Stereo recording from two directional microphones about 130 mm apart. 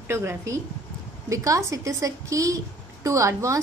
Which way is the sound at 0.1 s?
20° right (ahead or behind).